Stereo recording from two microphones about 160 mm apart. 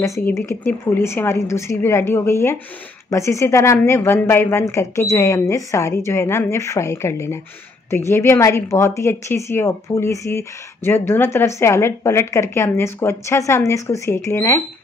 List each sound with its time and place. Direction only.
0.0 s speech: 20° left (ahead or behind)